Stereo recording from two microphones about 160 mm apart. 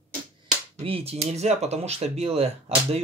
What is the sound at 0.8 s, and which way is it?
Speech, 35° right (ahead or behind).